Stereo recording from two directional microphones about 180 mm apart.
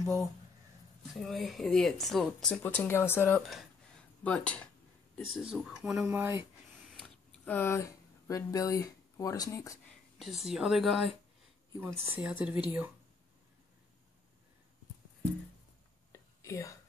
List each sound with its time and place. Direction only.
1.2 s speech: centre (ahead or behind)
5.1 s speech: 5° right (ahead or behind)
7.0 s speech: 10° left (ahead or behind)
9.8 s speech: centre (ahead or behind)
16.1 s whispering: 15° left (ahead or behind)